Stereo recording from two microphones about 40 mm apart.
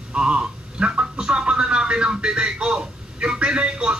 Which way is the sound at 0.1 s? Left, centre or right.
Right.